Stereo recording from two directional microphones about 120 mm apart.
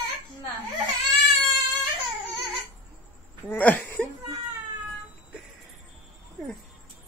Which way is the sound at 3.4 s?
15° left (ahead or behind).